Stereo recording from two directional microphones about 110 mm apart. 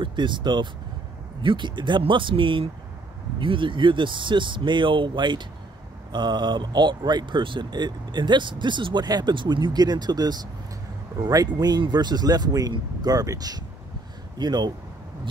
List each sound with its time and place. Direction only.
0.0 s speech: 45° right (ahead or behind)